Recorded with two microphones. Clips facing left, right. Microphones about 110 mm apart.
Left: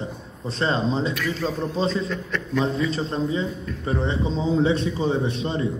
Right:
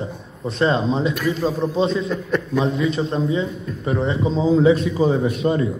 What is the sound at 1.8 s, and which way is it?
A man's voice, 35° left (ahead or behind).